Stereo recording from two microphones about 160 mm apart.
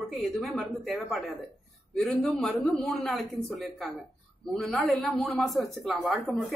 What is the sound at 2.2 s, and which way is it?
Speech, 5° left (ahead or behind).